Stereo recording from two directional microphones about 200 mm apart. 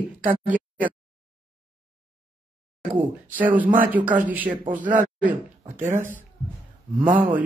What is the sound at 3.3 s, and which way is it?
Speech, 10° right (ahead or behind).